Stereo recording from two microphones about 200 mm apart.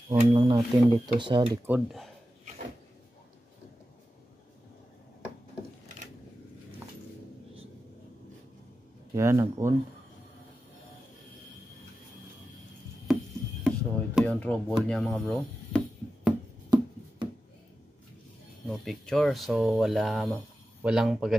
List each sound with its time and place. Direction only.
0.1 s speech: 30° right (ahead or behind)
1.7 s speech: centre (ahead or behind)
9.1 s speech: 15° right (ahead or behind)
13.7 s speech: 5° left (ahead or behind)
18.7 s speech: 5° left (ahead or behind)